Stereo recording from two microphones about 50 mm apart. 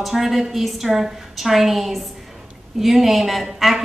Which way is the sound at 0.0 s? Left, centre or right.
Centre.